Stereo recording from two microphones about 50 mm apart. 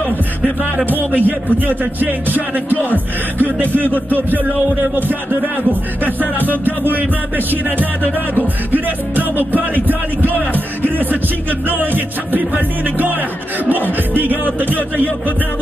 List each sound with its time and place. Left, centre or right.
1.1 s speech: right
11.8 s speech: right